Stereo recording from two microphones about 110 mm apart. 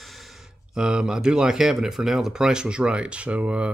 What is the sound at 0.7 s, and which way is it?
Speech, 5° right (ahead or behind).